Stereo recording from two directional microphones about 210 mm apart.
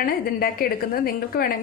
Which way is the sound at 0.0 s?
45° left (ahead or behind).